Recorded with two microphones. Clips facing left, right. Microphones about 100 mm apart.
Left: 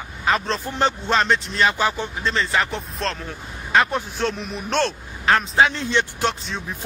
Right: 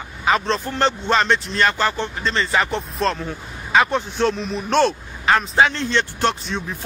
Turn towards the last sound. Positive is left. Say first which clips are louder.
# right 3 dB
turn(degrees=0)  # may be behind; listen again after turning